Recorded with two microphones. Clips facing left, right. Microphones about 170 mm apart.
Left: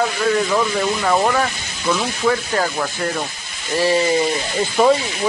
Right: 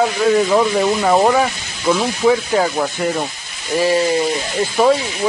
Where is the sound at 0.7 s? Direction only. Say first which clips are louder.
Right 4 dB; 20° right (ahead or behind).